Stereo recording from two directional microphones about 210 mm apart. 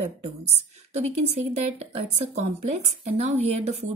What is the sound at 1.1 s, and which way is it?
Speech, 30° right (ahead or behind).